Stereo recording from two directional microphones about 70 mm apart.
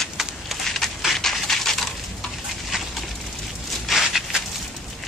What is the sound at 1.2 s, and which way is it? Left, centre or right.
Dog, centre.